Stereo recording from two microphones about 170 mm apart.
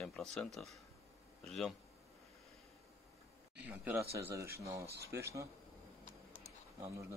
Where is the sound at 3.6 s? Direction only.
10° right (ahead or behind).